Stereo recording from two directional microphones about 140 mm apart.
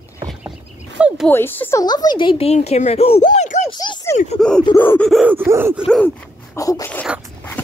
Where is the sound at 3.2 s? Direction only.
60° left (ahead or behind).